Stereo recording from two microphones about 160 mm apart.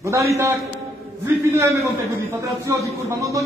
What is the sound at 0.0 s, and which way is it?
A man's voice, 20° right (ahead or behind).